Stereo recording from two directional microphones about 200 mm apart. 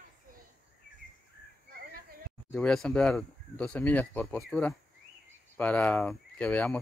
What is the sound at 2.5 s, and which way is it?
Speech, 5° left (ahead or behind).